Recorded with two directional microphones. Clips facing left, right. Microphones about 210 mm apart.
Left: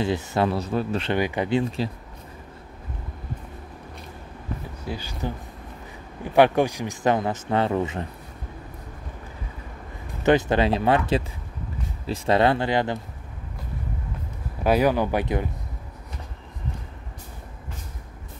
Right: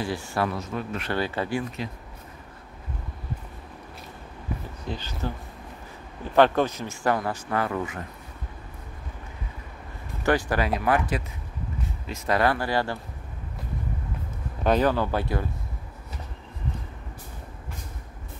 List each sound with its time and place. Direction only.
0.0 s speech: 20° left (ahead or behind)
0.6 s speech: 35° left (ahead or behind)
1.1 s speech: 15° left (ahead or behind)
4.8 s speech: 10° left (ahead or behind)
6.3 s speech: 15° left (ahead or behind)
10.2 s speech: 20° left (ahead or behind)
14.6 s speech: 10° left (ahead or behind)